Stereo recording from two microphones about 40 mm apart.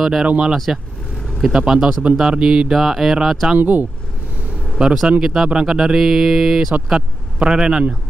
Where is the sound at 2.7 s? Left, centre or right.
Centre.